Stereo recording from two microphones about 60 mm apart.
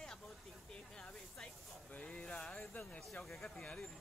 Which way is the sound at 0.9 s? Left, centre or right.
Centre.